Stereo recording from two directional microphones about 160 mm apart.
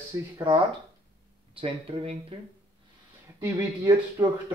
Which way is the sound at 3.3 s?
15° right (ahead or behind).